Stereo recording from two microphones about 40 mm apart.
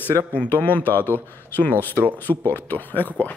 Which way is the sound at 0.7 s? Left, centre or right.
Left.